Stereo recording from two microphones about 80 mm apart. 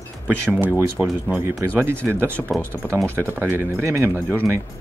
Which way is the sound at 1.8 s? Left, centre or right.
Right.